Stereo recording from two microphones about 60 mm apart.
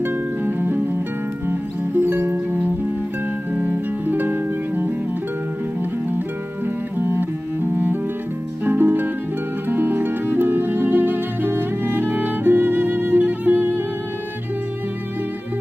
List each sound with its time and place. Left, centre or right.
0.0 s music: right
7.0 s cello: right
7.7 s music: right